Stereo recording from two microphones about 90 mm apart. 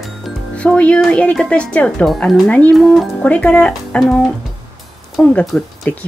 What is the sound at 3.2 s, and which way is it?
Speech, 15° left (ahead or behind).